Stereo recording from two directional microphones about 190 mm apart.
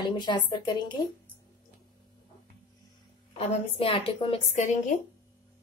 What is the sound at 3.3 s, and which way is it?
A woman's voice, 30° left (ahead or behind).